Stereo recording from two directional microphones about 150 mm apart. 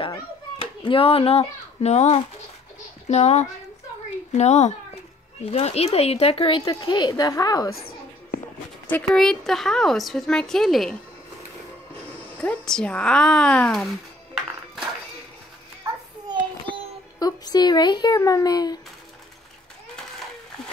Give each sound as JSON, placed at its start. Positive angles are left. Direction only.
{"t": 0.8, "sound": "a child's voice", "side_deg": 40}
{"t": 7.7, "sound": "a sound", "side_deg": 90}
{"t": 8.8, "sound": "a woman's voice", "side_deg": 5}
{"t": 12.4, "sound": "a woman's voice", "side_deg": 5}
{"t": 17.2, "sound": "a child's voice", "side_deg": 25}